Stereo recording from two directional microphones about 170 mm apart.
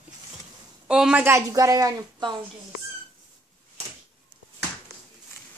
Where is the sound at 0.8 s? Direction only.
5° right (ahead or behind); by 2.3 s 20° right (ahead or behind).